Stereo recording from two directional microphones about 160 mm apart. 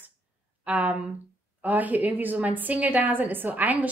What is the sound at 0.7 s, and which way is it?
A woman's voice, 10° right (ahead or behind).